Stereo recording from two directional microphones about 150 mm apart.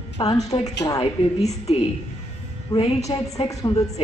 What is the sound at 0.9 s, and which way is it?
A woman's voice, 45° left (ahead or behind).